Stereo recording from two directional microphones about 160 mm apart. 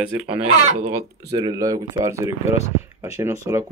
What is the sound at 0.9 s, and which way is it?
Speech, 25° right (ahead or behind).